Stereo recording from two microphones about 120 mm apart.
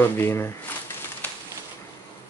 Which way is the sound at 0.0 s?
20° left (ahead or behind).